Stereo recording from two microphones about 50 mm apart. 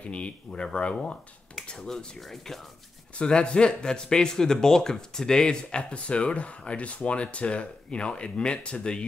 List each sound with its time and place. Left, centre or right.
0.0 s speech: left
1.9 s speech: centre
3.2 s speech: centre